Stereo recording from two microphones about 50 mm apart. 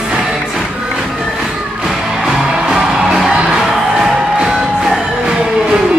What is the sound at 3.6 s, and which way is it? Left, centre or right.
Music, centre.